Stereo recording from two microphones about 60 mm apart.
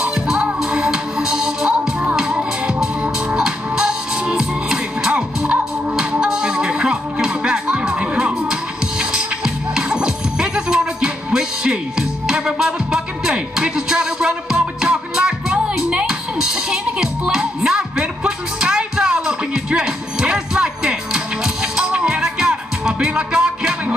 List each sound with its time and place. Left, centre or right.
0.1 s music: centre
1.7 s music: centre
3.4 s music: centre